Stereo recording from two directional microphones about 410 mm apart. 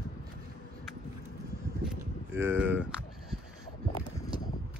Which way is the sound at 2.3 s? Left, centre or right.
Centre.